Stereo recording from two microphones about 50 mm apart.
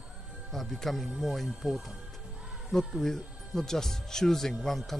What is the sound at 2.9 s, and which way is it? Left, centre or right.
Speech, centre.